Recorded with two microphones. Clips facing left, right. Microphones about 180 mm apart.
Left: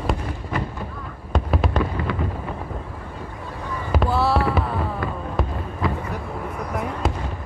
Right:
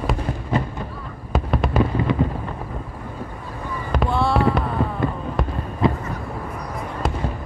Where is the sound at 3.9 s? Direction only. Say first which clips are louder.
Even; 5° left (ahead or behind).